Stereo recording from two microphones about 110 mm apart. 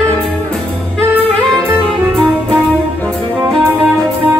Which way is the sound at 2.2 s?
5° left (ahead or behind).